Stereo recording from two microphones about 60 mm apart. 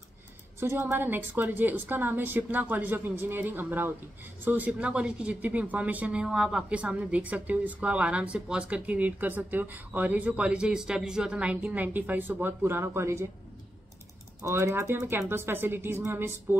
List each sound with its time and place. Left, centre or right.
0.6 s a woman's voice: right
6.2 s speech: centre; by 13.3 s right
14.4 s a woman's voice: right